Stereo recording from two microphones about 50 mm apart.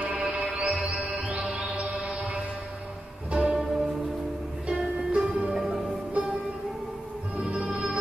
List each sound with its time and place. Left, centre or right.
0.0 s music: right
3.5 s music: centre
4.6 s music: right
7.3 s music: right
7.7 s music: centre